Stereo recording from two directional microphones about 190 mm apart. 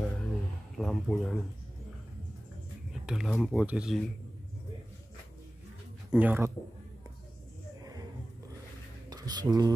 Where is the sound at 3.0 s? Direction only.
5° right (ahead or behind).